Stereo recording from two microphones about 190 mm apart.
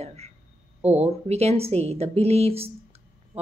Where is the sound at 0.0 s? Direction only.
35° right (ahead or behind).